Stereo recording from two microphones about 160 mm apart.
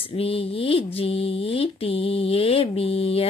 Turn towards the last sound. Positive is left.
turn(degrees=35)  # may be behind; listen again after turning